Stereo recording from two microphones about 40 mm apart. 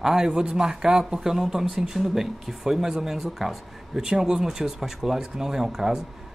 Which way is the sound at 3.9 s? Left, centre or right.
Centre.